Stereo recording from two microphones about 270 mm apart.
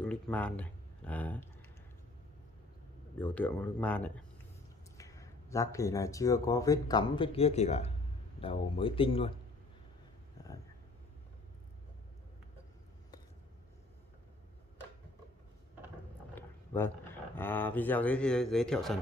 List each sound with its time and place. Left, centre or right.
0.0 s speech: centre
3.2 s speech: centre
16.3 s a sound: centre
17.4 s speech: centre